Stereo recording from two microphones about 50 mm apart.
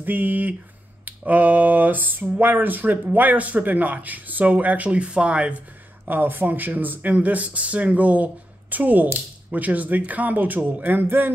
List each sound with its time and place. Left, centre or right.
0.0 s speech: right; by 5.5 s centre
6.0 s speech: right